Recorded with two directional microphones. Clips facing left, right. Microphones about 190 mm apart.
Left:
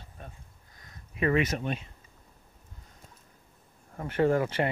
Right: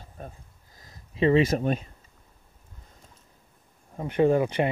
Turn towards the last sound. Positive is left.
turn(degrees=-15)  # may be behind; listen again after turning